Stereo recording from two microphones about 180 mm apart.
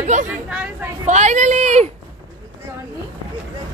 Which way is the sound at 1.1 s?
40° right (ahead or behind).